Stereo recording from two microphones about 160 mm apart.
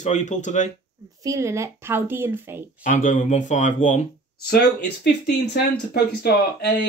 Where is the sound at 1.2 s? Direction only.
20° right (ahead or behind).